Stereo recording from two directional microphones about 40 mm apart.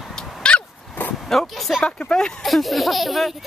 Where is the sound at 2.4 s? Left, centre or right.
Centre.